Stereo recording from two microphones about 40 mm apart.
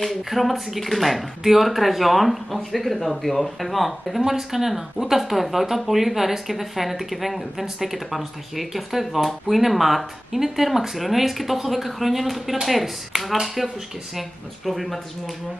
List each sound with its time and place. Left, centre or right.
0.0 s speech: centre